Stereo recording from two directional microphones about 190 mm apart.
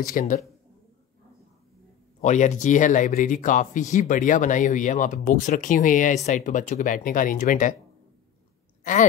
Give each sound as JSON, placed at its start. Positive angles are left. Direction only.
{"t": 0.0, "sound": "speech", "side_deg": 50}
{"t": 2.2, "sound": "speech", "side_deg": 40}